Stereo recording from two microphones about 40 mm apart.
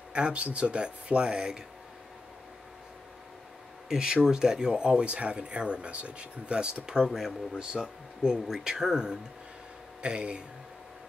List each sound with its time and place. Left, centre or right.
0.1 s speech: right
3.9 s speech: centre